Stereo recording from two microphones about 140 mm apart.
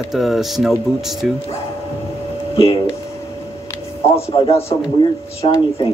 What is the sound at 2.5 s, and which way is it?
Speech, 45° left (ahead or behind).